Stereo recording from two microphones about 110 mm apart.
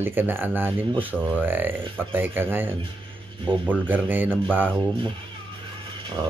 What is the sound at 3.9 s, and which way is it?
Speech, 15° right (ahead or behind).